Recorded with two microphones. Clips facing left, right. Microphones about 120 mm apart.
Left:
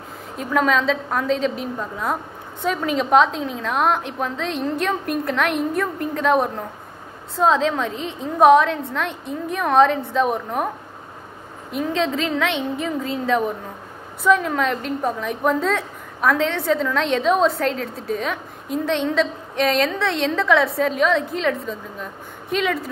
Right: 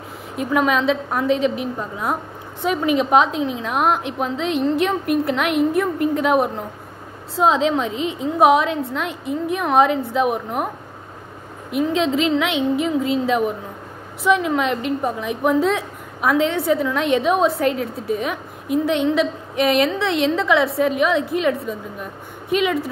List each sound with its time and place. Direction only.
0.4 s a woman's voice: 10° right (ahead or behind)
11.7 s a woman's voice: 15° right (ahead or behind)